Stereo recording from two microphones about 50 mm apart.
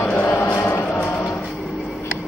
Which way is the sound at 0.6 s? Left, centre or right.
Left.